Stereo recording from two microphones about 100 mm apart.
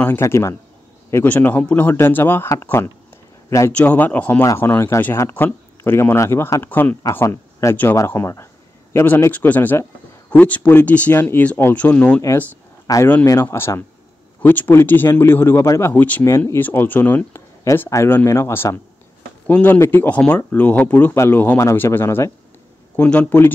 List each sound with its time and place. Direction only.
0.0 s speech: 25° left (ahead or behind)
3.7 s speech: 15° left (ahead or behind)
7.2 s speech: 30° left (ahead or behind); by 12.2 s 15° left (ahead or behind)
12.8 s speech: 35° left (ahead or behind)
13.1 s speech: 25° left (ahead or behind)
15.9 s speech: 15° left (ahead or behind)
16.3 s speech: 25° left (ahead or behind)
17.6 s speech: 30° left (ahead or behind); by 23.5 s 15° left (ahead or behind)